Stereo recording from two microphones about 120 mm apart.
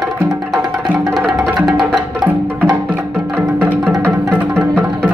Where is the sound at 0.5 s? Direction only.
35° right (ahead or behind).